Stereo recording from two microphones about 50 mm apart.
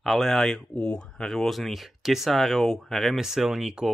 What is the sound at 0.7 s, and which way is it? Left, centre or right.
Speech, left.